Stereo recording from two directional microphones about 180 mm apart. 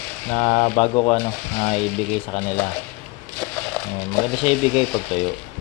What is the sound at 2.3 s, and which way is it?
Speech, 35° left (ahead or behind).